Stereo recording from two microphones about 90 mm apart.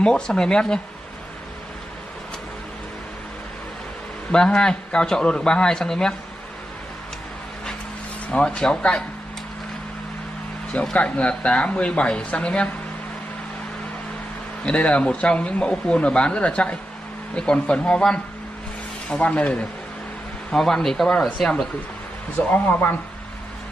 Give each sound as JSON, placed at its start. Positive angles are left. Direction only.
{"t": 0.0, "sound": "speech", "side_deg": 10}
{"t": 4.3, "sound": "speech", "side_deg": 10}
{"t": 8.3, "sound": "speech", "side_deg": 15}
{"t": 10.7, "sound": "speech", "side_deg": 15}
{"t": 14.6, "sound": "speech", "side_deg": 15}
{"t": 22.5, "sound": "speech", "side_deg": 20}